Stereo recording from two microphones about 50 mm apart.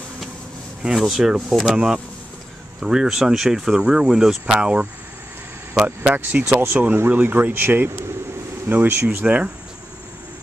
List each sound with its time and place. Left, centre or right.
0.8 s speech: centre; by 4.8 s right
5.9 s speech: right
9.2 s speech: right